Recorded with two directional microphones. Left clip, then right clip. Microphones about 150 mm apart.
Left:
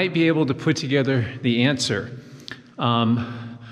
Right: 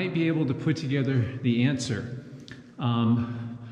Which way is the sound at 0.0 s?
15° right (ahead or behind).